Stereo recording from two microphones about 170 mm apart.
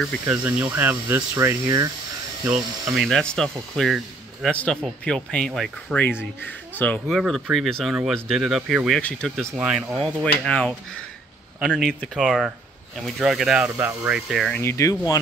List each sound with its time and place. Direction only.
0.3 s speech: 10° right (ahead or behind)
2.5 s speech: centre (ahead or behind)
7.1 s speech: centre (ahead or behind)
14.6 s speech: 15° left (ahead or behind)